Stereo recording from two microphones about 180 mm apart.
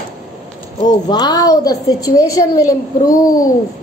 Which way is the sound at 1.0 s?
20° left (ahead or behind).